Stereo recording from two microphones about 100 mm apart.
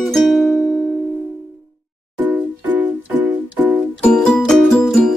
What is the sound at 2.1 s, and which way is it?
Music, 20° right (ahead or behind).